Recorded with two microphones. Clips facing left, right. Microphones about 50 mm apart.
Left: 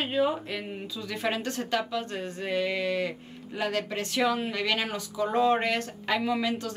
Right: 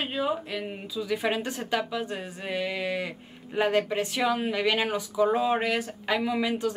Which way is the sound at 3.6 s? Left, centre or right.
Right.